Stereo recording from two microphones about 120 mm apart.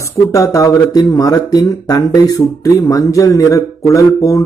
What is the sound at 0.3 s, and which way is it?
Speech, 30° left (ahead or behind).